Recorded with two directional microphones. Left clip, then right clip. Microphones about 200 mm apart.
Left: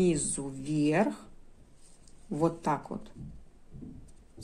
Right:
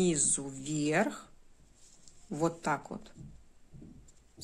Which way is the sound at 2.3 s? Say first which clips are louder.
Left 3 dB; 15° right (ahead or behind).